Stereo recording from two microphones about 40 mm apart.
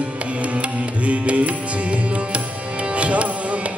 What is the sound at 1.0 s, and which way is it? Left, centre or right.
Music, right.